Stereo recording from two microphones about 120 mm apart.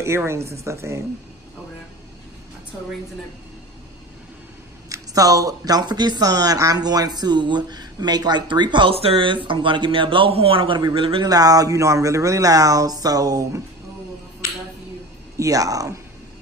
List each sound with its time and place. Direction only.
0.0 s speech: 25° right (ahead or behind)
4.8 s speech: 30° right (ahead or behind); by 11.2 s 50° right (ahead or behind)
11.2 s speech: 30° right (ahead or behind)
15.3 s speech: 30° right (ahead or behind)